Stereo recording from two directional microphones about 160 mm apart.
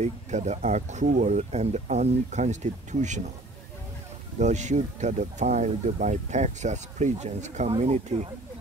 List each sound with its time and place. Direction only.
0.0 s speech: 45° right (ahead or behind)
4.4 s speech: 50° right (ahead or behind)